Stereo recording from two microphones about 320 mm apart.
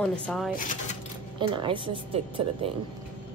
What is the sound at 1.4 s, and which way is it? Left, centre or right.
A woman's voice, centre.